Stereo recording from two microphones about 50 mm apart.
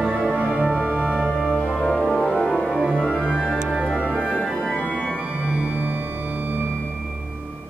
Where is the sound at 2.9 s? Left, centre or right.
Centre.